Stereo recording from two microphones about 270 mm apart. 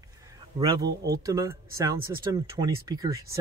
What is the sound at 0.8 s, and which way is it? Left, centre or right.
Speech, right.